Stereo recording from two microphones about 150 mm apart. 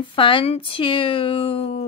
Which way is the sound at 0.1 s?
35° left (ahead or behind).